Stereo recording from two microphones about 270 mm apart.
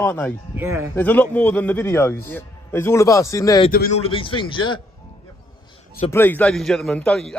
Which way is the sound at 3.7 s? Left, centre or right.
Left.